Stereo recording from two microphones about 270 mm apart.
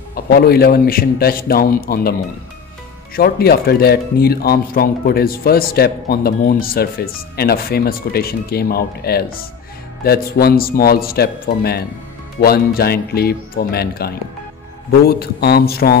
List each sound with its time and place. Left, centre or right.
0.1 s speech: left
3.2 s speech: left